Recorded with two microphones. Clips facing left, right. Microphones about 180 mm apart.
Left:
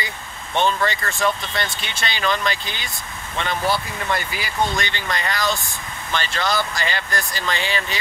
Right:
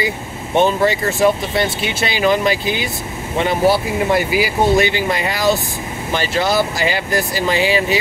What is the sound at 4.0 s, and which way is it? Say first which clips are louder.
Speech: right 10 dB; 10° right (ahead or behind).